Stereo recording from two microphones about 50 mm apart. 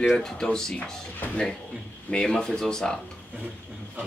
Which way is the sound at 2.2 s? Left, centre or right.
Centre.